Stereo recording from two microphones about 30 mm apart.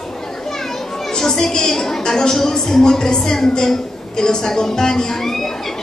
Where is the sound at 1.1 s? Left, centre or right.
Centre.